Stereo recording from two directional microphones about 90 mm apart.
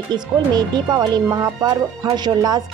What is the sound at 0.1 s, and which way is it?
Speech, 50° right (ahead or behind).